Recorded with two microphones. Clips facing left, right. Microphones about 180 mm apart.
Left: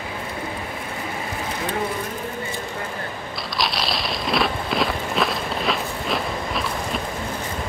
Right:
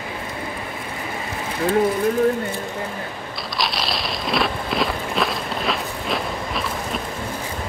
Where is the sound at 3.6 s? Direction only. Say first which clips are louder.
Even; centre (ahead or behind).